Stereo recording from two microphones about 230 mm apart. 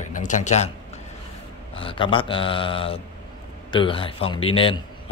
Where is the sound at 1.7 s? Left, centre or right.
Left.